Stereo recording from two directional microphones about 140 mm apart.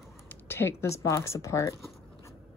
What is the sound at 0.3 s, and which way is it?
Speech, 15° left (ahead or behind).